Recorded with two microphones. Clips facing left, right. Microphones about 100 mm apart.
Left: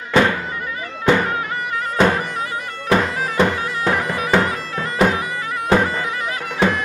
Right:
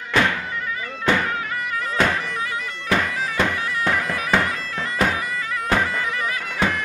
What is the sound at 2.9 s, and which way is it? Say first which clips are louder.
Bagpipes: left 4 dB; 30° left (ahead or behind).